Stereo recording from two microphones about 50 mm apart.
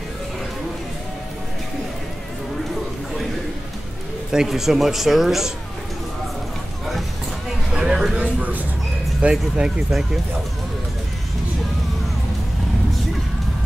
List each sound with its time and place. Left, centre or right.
4.3 s speech: centre
7.7 s a sound: centre
9.2 s speech: centre
9.8 s speech: centre